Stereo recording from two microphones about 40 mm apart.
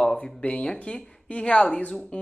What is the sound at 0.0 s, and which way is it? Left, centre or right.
Speech, left.